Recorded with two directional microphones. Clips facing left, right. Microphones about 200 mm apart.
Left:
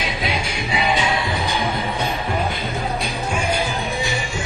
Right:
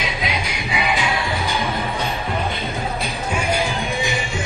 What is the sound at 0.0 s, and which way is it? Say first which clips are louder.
Music: left 1 dB; 30° left (ahead or behind).